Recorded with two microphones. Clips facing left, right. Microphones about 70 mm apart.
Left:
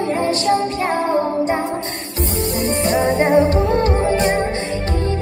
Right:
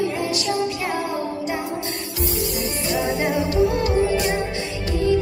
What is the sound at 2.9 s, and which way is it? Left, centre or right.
Music, left.